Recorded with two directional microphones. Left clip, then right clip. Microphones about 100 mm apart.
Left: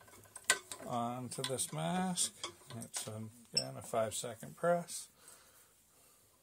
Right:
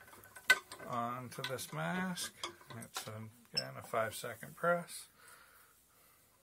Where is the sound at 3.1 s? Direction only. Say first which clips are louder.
Left 3 dB; 25° left (ahead or behind).